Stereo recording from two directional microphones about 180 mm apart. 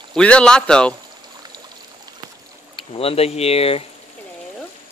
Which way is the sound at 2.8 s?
30° left (ahead or behind).